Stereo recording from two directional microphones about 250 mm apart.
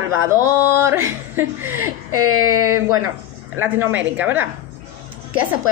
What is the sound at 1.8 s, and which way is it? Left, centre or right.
Speech, right.